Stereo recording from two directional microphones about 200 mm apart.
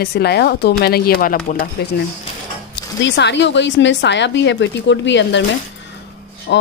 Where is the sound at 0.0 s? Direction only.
55° left (ahead or behind).